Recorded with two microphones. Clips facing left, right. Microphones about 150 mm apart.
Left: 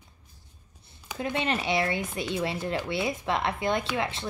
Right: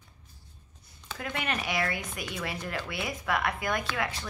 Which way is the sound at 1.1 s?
20° left (ahead or behind).